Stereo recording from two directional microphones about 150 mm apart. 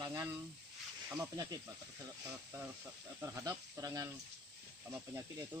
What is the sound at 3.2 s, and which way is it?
Speech, 20° right (ahead or behind).